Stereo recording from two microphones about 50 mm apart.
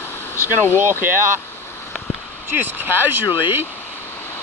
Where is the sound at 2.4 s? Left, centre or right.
Right.